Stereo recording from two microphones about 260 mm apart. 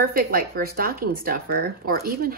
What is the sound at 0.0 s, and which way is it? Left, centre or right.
Speech, right.